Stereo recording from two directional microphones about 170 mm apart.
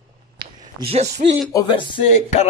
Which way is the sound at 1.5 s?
30° left (ahead or behind).